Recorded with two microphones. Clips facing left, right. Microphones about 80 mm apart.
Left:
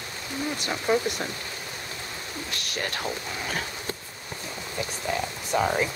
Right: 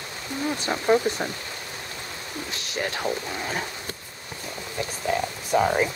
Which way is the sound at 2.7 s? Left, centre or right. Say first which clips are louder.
Right 4 dB; centre.